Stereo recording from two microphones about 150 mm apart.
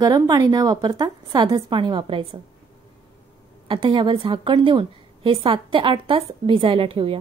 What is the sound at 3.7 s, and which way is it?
A woman's voice, 30° right (ahead or behind).